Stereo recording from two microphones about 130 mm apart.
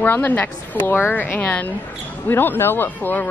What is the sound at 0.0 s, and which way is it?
Speech, 15° left (ahead or behind).